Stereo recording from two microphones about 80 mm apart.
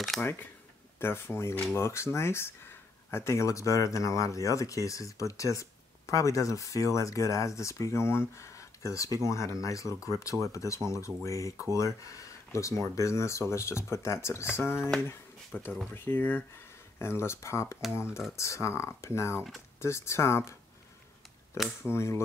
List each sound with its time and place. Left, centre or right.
0.2 s speech: left
15.0 s a sound: left
15.9 s speech: left
21.9 s speech: left